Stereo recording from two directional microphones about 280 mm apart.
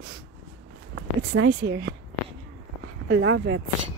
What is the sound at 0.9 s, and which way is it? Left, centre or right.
Speech, right.